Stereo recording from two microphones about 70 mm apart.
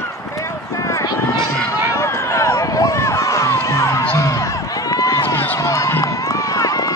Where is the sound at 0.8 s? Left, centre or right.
Left.